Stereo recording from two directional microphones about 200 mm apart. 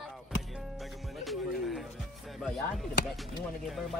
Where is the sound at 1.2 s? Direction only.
Centre (ahead or behind).